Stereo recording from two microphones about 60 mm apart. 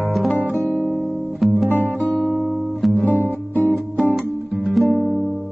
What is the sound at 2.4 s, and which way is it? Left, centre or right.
Music, centre.